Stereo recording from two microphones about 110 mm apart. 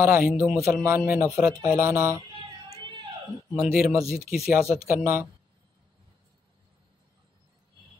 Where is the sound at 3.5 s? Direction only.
5° right (ahead or behind).